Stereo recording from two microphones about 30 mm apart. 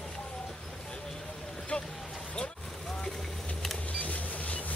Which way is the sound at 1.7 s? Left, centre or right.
Left.